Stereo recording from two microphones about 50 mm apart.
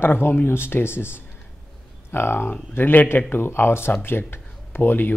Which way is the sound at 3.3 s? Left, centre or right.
Left.